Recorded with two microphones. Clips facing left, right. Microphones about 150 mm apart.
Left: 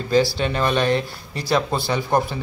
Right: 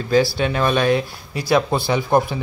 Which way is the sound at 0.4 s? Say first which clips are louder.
Right 2 dB; 10° right (ahead or behind).